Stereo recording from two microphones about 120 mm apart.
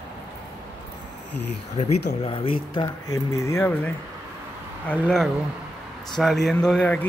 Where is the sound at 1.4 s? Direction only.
65° left (ahead or behind); by 3.9 s 15° left (ahead or behind).